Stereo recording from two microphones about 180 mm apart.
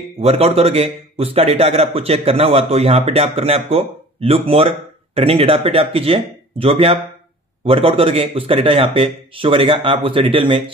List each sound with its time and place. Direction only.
0.2 s a man's voice: 35° right (ahead or behind)